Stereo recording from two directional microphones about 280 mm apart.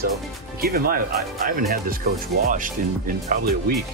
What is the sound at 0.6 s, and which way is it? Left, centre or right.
Speech, right.